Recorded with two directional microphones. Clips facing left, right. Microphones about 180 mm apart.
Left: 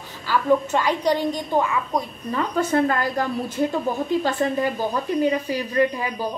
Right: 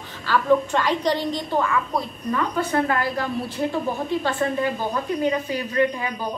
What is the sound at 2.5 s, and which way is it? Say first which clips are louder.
A woman's voice: left 5 dB; 45° left (ahead or behind).